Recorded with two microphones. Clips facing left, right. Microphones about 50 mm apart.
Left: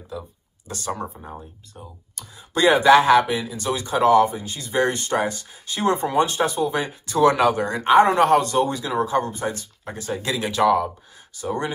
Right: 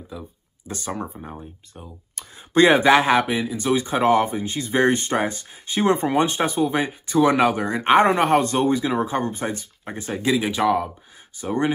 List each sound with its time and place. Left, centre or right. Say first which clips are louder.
0.1 s speech: left 4 dB; centre
1.8 s speech: left 1 dB; right
7.8 s speech: left 1 dB; right
10.2 s speech: even; centre
11.3 s speech: right 3 dB; right